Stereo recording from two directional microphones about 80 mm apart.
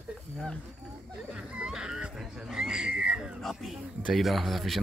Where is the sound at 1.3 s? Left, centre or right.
Centre.